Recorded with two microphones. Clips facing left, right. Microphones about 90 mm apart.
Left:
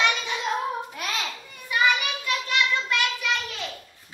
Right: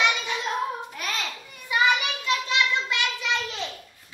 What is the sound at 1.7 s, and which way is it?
Child singing, 20° right (ahead or behind).